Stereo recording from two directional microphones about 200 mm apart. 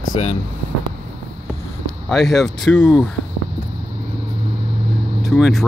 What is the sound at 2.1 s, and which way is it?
Speech, centre (ahead or behind).